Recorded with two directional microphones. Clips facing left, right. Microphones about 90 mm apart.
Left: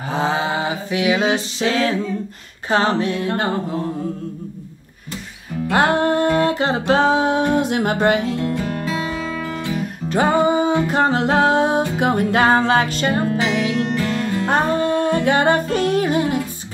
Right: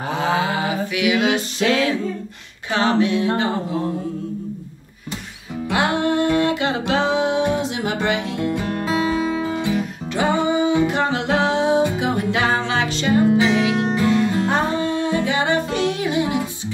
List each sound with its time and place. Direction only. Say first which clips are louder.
0.1 s a sound: left 1 dB; 30° left (ahead or behind)
2.7 s music: even; 40° left (ahead or behind)
5.7 s music: left 3 dB; 45° left (ahead or behind)
8.8 s music: right 4 dB; 25° right (ahead or behind)
10.0 s music: left 4 dB; 40° left (ahead or behind)
14.4 s music: left 2 dB; 50° left (ahead or behind)